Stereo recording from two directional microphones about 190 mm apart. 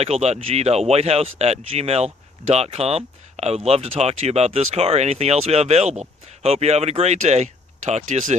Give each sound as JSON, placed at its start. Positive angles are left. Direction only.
{"t": 0.0, "sound": "speech", "side_deg": -35}